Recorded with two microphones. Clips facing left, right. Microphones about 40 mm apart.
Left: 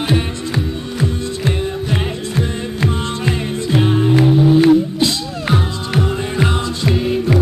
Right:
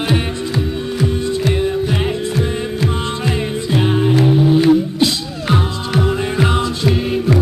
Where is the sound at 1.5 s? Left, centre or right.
Centre.